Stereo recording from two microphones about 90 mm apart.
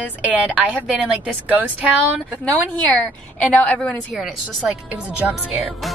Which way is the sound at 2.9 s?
15° left (ahead or behind).